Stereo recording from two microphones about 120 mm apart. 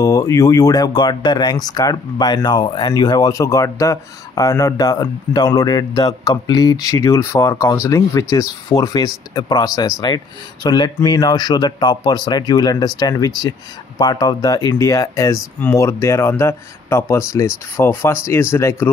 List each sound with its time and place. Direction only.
0.0 s speech: 30° left (ahead or behind)